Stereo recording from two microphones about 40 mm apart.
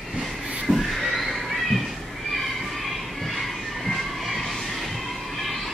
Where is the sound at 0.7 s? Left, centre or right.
Centre.